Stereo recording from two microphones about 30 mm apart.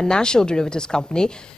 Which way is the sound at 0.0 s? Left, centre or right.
Left.